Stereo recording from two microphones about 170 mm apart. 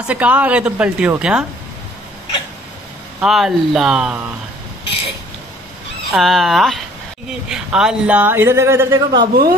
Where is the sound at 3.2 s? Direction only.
Centre (ahead or behind).